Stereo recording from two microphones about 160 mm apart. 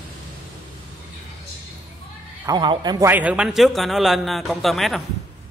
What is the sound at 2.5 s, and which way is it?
Speech, 30° right (ahead or behind).